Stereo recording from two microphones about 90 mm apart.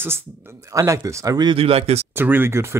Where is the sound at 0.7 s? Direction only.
35° right (ahead or behind).